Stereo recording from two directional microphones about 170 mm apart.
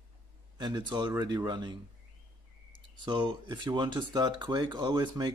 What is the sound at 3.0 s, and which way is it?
Speech, 25° right (ahead or behind).